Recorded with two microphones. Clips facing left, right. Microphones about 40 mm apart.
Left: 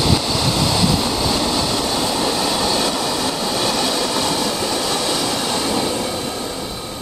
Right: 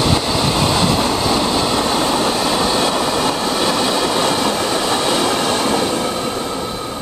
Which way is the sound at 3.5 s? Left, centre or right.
Centre.